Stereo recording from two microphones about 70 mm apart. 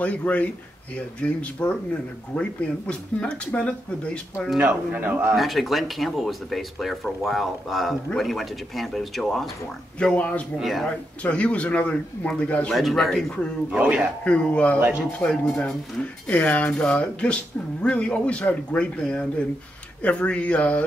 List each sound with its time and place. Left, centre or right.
0.0 s speech: left
4.6 s speech: centre
5.3 s speech: centre
9.9 s speech: centre
10.6 s speech: centre
11.2 s speech: centre
12.7 s speech: centre
13.7 s a man's voice: centre
14.2 s speech: centre